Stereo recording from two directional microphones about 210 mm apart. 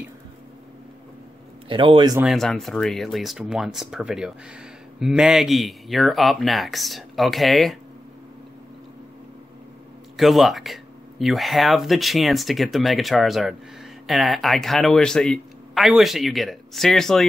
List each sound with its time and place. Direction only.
1.7 s a man's voice: 25° right (ahead or behind)
2.1 s speech: centre (ahead or behind)
10.1 s speech: centre (ahead or behind)